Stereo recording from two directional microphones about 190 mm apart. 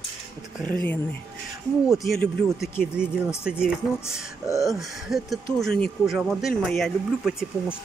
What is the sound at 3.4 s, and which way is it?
Speech, 5° right (ahead or behind).